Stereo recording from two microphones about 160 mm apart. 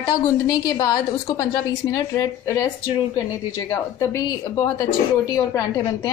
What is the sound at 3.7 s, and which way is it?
A woman's voice, 20° left (ahead or behind).